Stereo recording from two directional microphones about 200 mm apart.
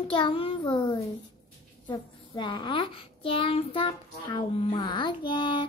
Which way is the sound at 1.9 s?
25° left (ahead or behind).